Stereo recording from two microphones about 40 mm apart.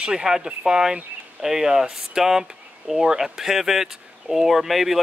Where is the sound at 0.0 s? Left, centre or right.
Centre.